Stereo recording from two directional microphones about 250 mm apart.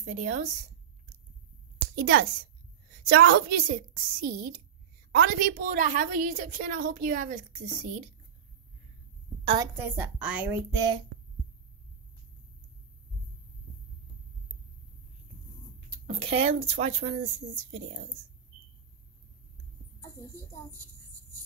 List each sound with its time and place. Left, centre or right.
0.0 s a woman's voice: right
2.0 s a woman's voice: right
9.4 s a woman's voice: right
9.8 s a woman's voice: centre
16.1 s a woman's voice: right
20.5 s a child's voice: centre